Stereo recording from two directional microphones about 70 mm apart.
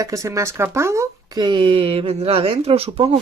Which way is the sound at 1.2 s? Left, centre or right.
Right.